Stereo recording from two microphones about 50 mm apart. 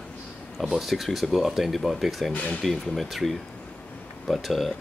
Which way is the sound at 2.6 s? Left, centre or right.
Centre.